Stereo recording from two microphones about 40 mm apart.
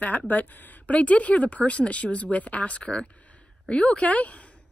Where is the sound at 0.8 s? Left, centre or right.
Left.